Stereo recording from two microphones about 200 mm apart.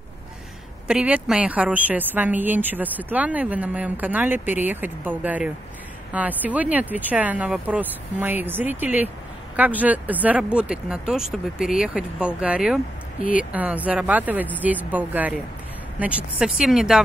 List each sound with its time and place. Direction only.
0.8 s a woman's voice: 5° right (ahead or behind)
13.2 s speech: 45° left (ahead or behind)
13.5 s a woman's voice: 5° right (ahead or behind)